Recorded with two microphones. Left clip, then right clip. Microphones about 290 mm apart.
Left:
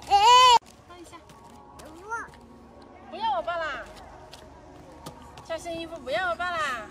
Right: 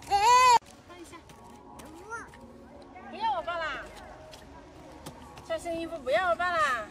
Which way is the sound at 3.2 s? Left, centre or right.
Centre.